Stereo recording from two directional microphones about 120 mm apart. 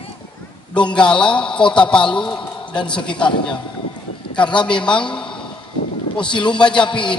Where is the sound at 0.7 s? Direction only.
10° left (ahead or behind).